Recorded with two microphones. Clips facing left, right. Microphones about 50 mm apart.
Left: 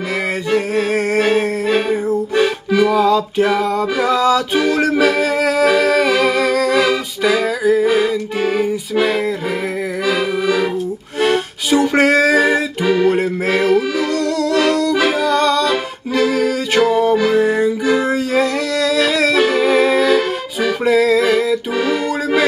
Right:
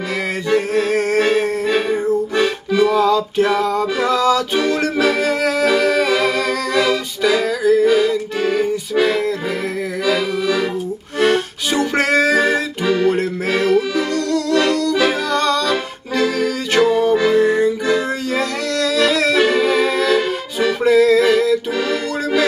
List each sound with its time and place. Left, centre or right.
0.5 s music: centre
3.1 s a sound: centre
4.2 s music: centre
21.7 s accordion: centre